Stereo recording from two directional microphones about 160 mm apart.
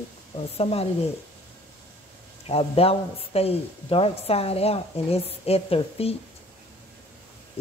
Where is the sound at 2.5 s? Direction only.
35° left (ahead or behind).